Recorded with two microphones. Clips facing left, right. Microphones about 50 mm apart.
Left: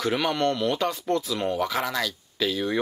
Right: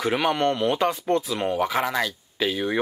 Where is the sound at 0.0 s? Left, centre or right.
Right.